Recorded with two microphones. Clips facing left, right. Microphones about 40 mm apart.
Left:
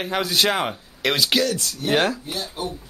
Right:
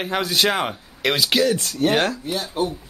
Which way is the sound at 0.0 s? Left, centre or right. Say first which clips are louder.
Right 1 dB; centre.